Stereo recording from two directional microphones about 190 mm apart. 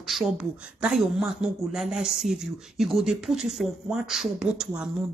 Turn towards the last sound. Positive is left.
turn(degrees=-5)  # may be behind; listen again after turning